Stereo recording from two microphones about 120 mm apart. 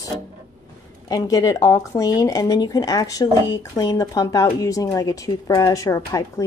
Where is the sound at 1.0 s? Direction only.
30° left (ahead or behind).